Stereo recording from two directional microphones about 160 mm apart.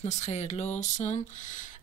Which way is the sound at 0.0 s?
45° left (ahead or behind).